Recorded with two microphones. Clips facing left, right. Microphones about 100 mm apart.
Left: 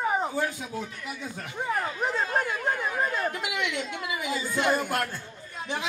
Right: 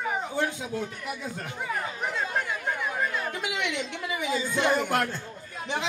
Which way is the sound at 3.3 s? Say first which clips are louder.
Even; 20° right (ahead or behind).